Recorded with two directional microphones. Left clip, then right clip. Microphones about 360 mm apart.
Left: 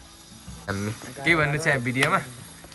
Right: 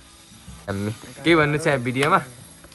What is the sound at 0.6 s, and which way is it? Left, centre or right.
Music, centre.